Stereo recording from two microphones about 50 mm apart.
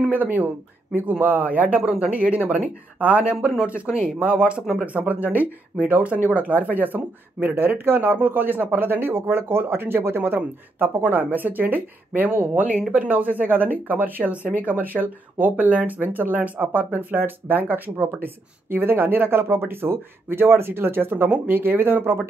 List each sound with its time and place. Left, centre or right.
0.1 s speech: right
11.0 s speech: right
22.0 s speech: right